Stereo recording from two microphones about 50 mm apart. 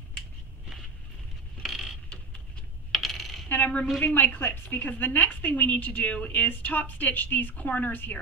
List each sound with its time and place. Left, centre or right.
1.6 s mechanisms: centre
2.9 s coin: centre
3.4 s a sound: left
4.0 s a woman's voice: left